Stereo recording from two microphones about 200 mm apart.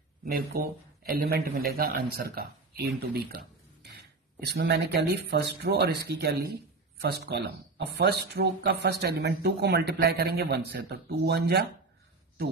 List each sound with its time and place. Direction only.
0.2 s speech: 50° right (ahead or behind)
4.5 s speech: 55° right (ahead or behind)